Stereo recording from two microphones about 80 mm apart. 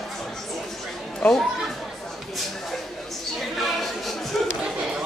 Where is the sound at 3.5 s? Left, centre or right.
Centre.